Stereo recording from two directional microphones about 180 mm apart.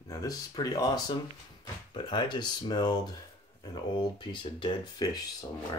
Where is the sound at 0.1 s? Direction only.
20° left (ahead or behind).